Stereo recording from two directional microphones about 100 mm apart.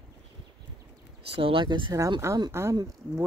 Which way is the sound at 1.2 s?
70° right (ahead or behind).